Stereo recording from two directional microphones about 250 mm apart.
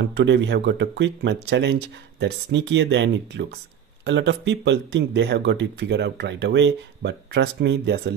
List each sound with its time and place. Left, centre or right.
0.1 s speech: right